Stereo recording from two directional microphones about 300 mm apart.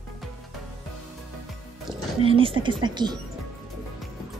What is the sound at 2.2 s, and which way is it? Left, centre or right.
Speech, centre.